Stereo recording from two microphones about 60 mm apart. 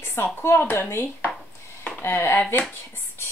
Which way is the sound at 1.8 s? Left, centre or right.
Left.